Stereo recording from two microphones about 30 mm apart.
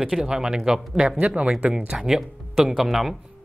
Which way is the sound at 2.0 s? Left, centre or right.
Centre.